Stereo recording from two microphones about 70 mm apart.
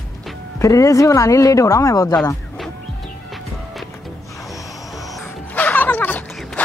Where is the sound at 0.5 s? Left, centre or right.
Left.